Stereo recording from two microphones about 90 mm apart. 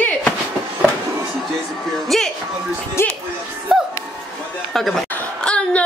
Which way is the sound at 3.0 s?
30° left (ahead or behind).